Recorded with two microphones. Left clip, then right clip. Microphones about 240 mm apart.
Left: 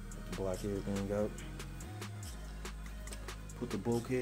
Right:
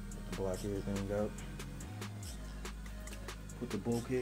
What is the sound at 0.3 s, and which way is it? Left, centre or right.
Music, centre.